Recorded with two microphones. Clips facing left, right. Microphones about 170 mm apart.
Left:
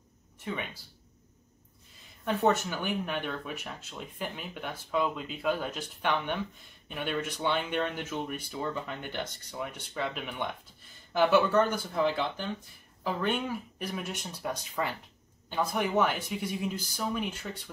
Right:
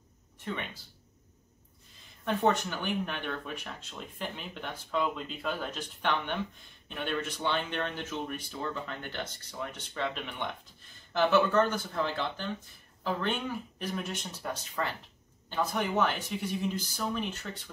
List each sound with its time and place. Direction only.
2.2 s speech: 5° left (ahead or behind)